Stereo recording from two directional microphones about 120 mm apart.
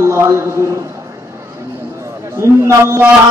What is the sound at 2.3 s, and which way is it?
Speech, 25° right (ahead or behind).